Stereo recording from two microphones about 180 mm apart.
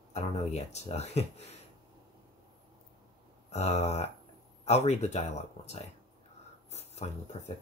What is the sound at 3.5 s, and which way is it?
Speech, 35° left (ahead or behind).